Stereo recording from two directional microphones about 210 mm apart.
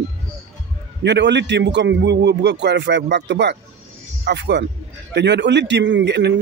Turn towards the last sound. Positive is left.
turn(degrees=-55)  # may be behind; listen again after turning